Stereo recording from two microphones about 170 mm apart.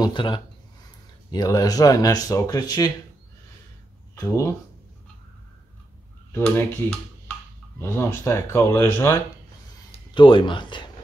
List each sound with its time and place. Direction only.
0.0 s speech: 30° left (ahead or behind)
4.1 s speech: 15° left (ahead or behind)
6.3 s speech: 10° left (ahead or behind)
10.1 s speech: 30° left (ahead or behind)